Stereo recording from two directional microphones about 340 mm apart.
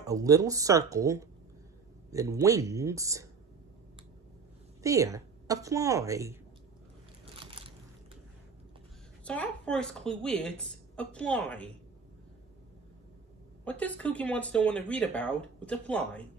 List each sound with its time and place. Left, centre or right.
0.0 s a woman's voice: centre
4.8 s a woman's voice: centre
7.3 s a sound: centre
9.2 s speech: centre
13.7 s speech: centre